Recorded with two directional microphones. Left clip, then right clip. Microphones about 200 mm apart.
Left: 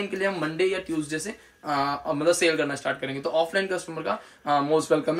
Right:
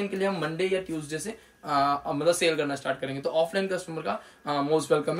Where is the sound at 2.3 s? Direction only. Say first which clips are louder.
Left 2 dB; 5° left (ahead or behind).